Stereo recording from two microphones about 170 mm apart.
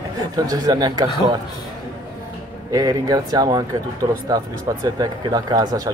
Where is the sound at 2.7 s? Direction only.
20° right (ahead or behind).